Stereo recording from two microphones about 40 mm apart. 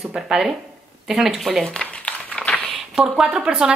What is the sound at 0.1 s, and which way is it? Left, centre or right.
A woman's voice, centre.